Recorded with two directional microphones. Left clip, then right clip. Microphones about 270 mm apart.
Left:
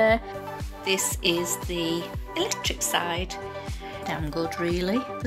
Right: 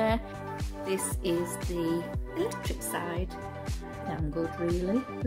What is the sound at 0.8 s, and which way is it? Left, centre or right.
Speech, centre.